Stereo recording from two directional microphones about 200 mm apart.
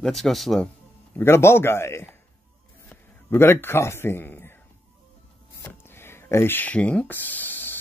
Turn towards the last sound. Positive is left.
turn(degrees=10)  # may be behind; listen again after turning